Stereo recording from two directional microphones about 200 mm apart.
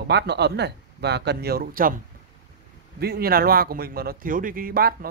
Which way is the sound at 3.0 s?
50° right (ahead or behind).